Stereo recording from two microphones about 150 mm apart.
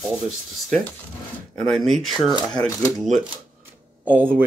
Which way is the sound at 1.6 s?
Centre (ahead or behind).